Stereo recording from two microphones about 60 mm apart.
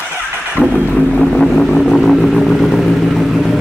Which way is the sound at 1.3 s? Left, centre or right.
Centre.